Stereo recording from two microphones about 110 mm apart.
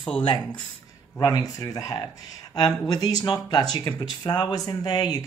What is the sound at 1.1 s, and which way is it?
Speech, 35° left (ahead or behind).